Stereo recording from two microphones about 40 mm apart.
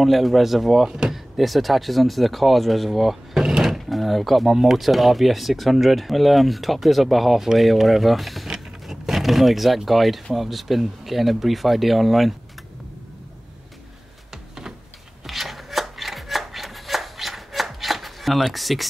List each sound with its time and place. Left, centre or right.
0.0 s speech: centre
0.8 s speech: right
1.1 s speech: centre
3.4 s drawer open or close: centre
3.7 s speech: centre
8.5 s a sound: centre
9.8 s speech: centre
15.2 s chopping: centre